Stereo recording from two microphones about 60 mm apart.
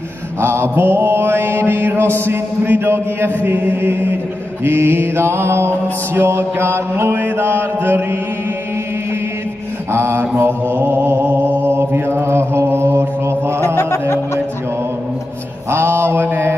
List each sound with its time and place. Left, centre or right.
0.4 s mantra: right
9.9 s mantra: right
15.7 s mantra: right